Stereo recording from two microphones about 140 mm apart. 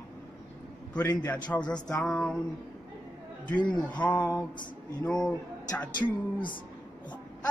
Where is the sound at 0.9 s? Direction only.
30° left (ahead or behind).